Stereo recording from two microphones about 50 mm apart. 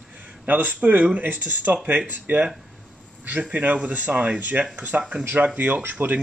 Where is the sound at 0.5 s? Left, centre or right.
Right.